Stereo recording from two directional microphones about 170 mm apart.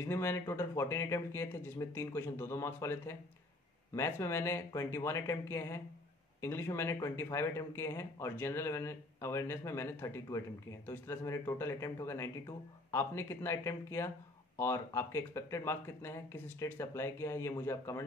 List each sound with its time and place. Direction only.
0.0 s speech: 15° left (ahead or behind)